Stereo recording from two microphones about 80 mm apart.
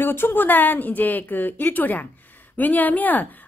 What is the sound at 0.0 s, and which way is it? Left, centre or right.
A woman's voice, left.